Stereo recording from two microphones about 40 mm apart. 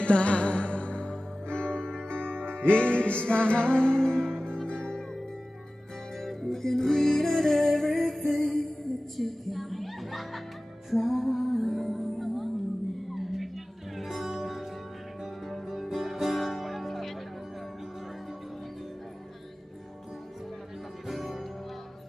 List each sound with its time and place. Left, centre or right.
0.0 s music: left
6.2 s music: centre
21.1 s music: centre